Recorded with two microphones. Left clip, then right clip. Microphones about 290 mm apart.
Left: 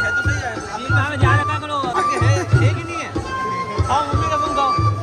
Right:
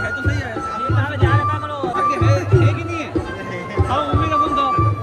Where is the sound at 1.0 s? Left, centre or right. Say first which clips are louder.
Left 4 dB; left.